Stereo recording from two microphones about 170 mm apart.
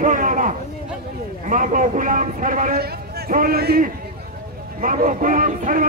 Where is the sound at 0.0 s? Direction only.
50° right (ahead or behind).